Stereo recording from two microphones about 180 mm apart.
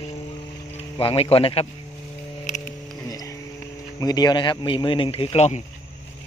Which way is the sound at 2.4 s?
40° left (ahead or behind).